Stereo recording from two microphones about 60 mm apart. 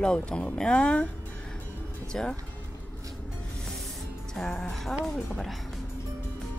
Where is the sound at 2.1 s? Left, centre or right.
Centre.